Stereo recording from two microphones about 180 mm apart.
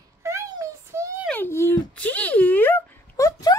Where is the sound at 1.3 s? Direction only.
10° left (ahead or behind).